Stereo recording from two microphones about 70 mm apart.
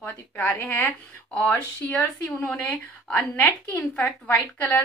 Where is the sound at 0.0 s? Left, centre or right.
Left.